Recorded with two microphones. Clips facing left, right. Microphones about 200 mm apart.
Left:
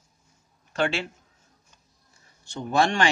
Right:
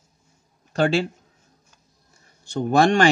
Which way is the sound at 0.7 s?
40° right (ahead or behind).